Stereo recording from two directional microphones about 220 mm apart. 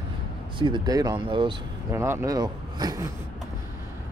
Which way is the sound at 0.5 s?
20° right (ahead or behind).